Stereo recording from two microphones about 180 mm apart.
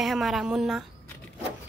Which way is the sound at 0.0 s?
Centre (ahead or behind).